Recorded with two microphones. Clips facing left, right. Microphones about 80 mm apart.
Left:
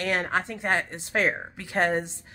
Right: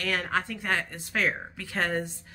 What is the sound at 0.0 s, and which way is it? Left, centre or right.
Speech, left.